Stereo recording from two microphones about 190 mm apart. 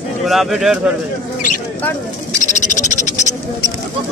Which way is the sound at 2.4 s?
40° left (ahead or behind).